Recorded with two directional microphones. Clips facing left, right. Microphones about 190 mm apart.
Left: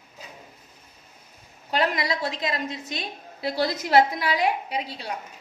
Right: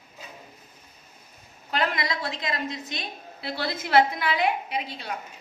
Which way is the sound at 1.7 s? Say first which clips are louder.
Left 3 dB; 35° left (ahead or behind).